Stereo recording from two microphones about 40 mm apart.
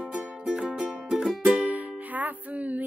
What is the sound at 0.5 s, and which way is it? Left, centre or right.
Music, centre.